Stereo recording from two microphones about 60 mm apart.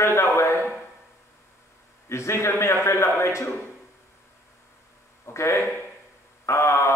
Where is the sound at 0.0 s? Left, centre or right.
Left.